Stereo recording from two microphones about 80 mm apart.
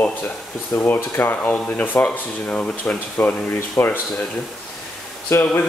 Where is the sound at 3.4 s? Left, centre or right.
Left.